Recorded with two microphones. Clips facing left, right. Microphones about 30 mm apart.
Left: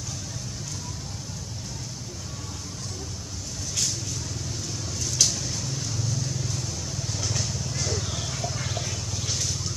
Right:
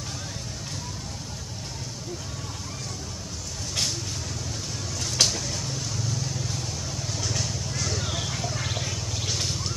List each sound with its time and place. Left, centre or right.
5.0 s vehicle: right
5.4 s vehicle: centre
9.4 s vehicle: right